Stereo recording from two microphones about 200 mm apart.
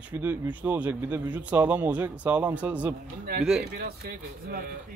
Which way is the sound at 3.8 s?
50° right (ahead or behind).